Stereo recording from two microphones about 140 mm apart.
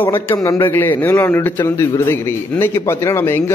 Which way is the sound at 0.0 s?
20° left (ahead or behind).